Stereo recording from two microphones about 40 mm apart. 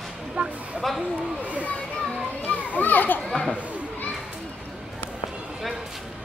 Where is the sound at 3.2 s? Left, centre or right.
Centre.